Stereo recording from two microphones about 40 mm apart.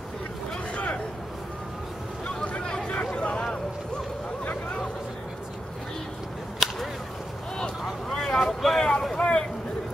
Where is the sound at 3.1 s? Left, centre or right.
Left.